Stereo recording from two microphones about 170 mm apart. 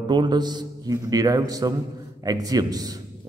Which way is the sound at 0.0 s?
25° right (ahead or behind).